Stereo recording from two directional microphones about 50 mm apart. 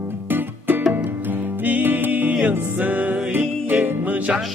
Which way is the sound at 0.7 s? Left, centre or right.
Right.